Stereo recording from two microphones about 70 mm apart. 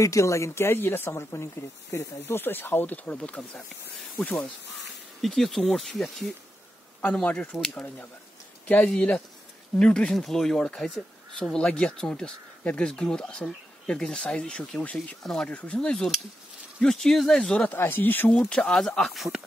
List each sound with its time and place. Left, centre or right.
0.0 s speech: left
3.2 s speech: centre
5.2 s speech: centre
7.5 s speech: centre
8.6 s speech: centre
17.6 s speech: left
18.3 s speech: centre